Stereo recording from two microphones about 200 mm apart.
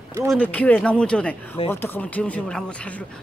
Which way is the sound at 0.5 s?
5° left (ahead or behind).